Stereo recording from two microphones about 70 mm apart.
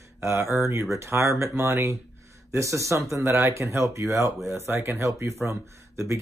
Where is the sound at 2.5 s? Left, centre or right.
Right.